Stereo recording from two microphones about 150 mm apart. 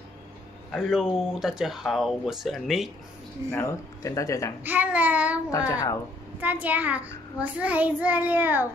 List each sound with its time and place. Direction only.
0.7 s speech: centre (ahead or behind)
3.5 s speech: 20° left (ahead or behind)
4.6 s a child's voice: 10° right (ahead or behind)
5.7 s speech: 20° left (ahead or behind)
6.4 s a child's voice: 10° right (ahead or behind)